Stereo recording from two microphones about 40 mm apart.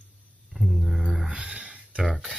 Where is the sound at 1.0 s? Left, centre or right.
Centre.